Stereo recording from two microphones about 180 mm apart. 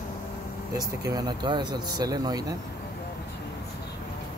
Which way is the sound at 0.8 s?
20° right (ahead or behind).